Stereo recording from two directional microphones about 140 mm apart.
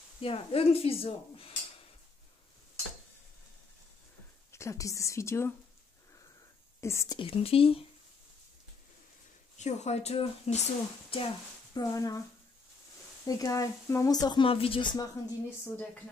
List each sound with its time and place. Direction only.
0.2 s speech: 45° left (ahead or behind)
4.5 s speech: 20° left (ahead or behind)
6.8 s speech: 20° left (ahead or behind)
7.2 s speech: 40° left (ahead or behind)
9.6 s speech: 55° left (ahead or behind)
11.7 s speech: 25° left (ahead or behind)
13.2 s speech: 25° left (ahead or behind)
15.6 s speech: 15° left (ahead or behind)